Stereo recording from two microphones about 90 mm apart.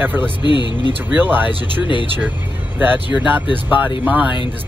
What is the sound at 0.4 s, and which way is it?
Speech, 60° left (ahead or behind).